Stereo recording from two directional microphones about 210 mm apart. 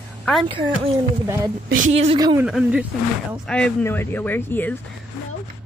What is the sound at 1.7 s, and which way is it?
Speech, 70° right (ahead or behind).